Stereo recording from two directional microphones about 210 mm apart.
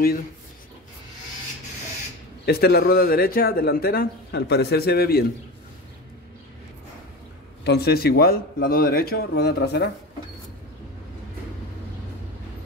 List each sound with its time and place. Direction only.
2.4 s speech: 50° left (ahead or behind)
7.6 s speech: 50° left (ahead or behind)